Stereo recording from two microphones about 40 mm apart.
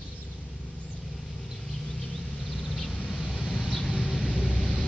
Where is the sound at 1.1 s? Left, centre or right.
Centre.